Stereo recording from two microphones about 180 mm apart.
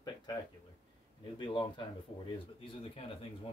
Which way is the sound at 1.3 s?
25° left (ahead or behind).